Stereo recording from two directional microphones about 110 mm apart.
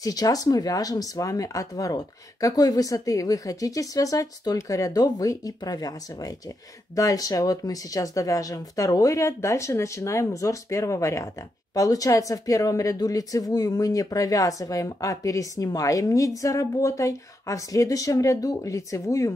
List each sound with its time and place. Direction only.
0.0 s a woman's voice: 35° left (ahead or behind)